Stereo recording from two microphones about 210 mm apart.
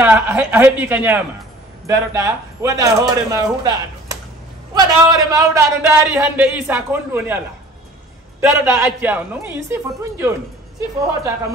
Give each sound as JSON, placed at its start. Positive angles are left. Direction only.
{"t": 0.0, "sound": "a man's voice", "side_deg": -5}
{"t": 8.4, "sound": "a man's voice", "side_deg": -10}